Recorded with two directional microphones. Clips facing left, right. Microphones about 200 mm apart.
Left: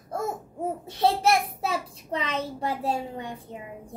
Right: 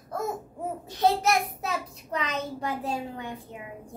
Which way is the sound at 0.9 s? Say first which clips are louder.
Left 1 dB; 30° left (ahead or behind).